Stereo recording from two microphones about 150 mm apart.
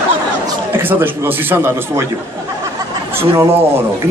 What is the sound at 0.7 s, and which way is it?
A man's voice, 15° right (ahead or behind).